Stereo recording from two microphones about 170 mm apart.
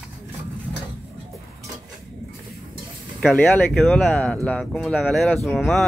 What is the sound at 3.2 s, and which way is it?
Speech, 5° left (ahead or behind).